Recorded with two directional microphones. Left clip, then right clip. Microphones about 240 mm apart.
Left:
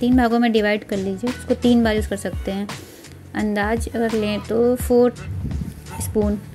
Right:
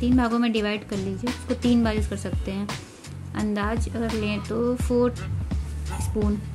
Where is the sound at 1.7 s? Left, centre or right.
Centre.